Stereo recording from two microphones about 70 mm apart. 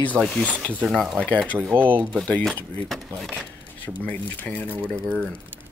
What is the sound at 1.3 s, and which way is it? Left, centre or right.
Speech, left.